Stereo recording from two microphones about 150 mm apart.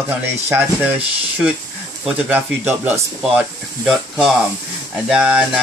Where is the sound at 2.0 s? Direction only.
15° right (ahead or behind).